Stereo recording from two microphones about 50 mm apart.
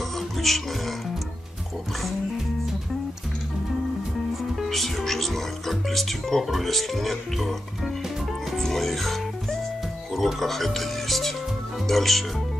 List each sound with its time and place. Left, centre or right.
0.4 s music: centre
4.6 s speech: centre
8.5 s music: centre
10.1 s speech: centre